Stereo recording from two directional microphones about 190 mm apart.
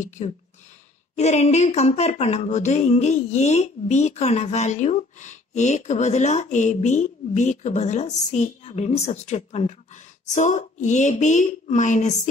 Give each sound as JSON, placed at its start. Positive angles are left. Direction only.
{"t": 0.2, "sound": "speech", "side_deg": 35}